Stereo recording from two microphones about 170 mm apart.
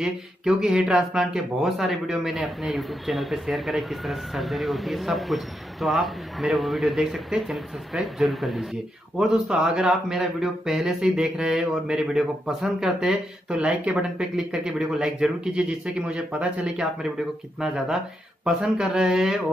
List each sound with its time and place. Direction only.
0.0 s speech: 5° right (ahead or behind)